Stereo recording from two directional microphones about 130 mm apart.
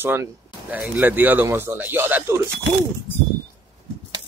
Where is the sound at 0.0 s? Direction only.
15° right (ahead or behind).